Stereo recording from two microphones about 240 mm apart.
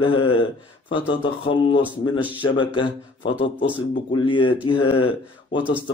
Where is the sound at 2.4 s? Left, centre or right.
Left.